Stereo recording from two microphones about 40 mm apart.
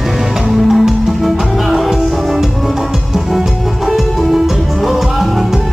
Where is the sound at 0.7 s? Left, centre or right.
Centre.